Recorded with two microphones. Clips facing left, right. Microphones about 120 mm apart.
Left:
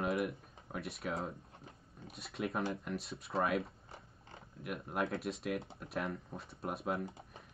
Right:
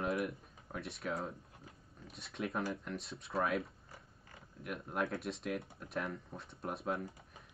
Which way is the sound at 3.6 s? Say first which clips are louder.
Left 2 dB; 25° left (ahead or behind).